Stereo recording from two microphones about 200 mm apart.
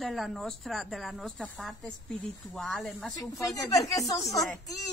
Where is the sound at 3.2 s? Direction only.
15° left (ahead or behind).